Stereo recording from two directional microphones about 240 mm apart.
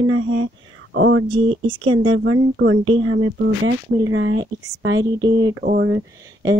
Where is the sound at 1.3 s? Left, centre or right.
Right.